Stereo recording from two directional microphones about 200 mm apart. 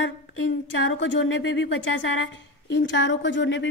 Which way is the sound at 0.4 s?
65° left (ahead or behind).